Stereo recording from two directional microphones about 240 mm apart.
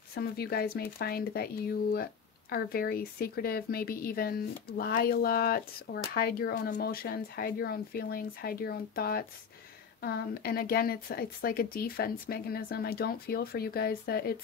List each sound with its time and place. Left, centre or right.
0.1 s a woman's voice: left